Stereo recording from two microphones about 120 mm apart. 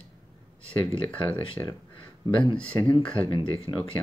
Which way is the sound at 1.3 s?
45° left (ahead or behind).